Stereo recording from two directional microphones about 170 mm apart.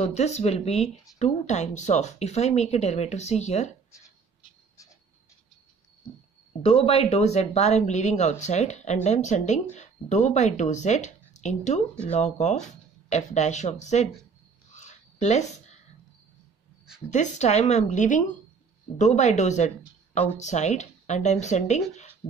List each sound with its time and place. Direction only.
0.0 s speech: 40° left (ahead or behind)
6.6 s speech: 35° left (ahead or behind)
14.7 s a sound: 45° left (ahead or behind)
17.1 s speech: 45° left (ahead or behind)